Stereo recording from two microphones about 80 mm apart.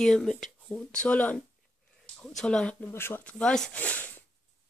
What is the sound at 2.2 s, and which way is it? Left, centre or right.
Speech, centre.